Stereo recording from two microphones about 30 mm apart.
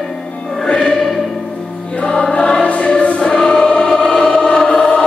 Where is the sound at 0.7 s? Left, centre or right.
Left.